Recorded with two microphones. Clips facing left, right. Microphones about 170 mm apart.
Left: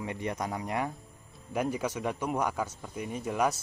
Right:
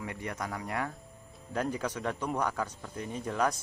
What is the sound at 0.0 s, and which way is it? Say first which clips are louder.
A man's voice: left 4 dB; 20° left (ahead or behind).